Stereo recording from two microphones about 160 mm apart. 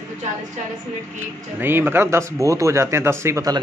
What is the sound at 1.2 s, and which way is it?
A man's voice, 15° right (ahead or behind).